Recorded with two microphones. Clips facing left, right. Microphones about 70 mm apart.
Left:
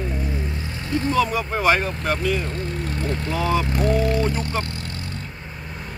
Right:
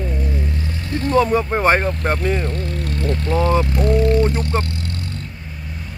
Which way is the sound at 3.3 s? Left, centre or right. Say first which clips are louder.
Right 5 dB; right.